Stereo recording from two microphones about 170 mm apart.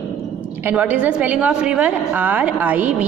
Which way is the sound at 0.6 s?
10° right (ahead or behind).